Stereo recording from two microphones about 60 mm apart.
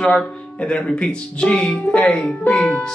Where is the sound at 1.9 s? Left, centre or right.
Left.